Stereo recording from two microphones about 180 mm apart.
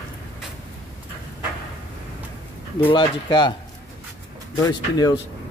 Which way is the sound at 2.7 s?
25° left (ahead or behind).